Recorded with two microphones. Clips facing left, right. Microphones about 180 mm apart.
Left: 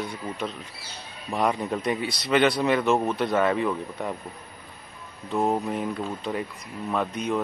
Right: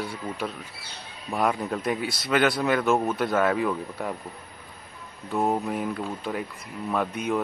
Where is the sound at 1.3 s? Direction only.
Centre (ahead or behind).